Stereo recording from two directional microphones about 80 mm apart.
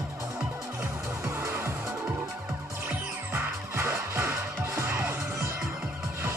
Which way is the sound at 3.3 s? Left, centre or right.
Right.